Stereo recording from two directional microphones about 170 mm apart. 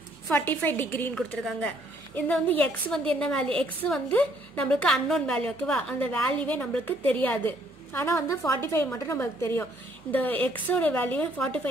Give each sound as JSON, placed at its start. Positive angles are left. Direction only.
{"t": 0.3, "sound": "a woman's voice", "side_deg": 10}